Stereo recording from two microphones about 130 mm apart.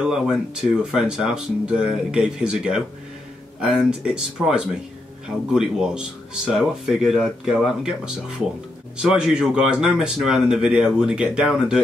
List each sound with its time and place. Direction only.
0.0 s speech: 5° right (ahead or behind)